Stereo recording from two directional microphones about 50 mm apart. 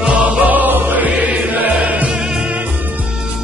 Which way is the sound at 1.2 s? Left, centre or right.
Right.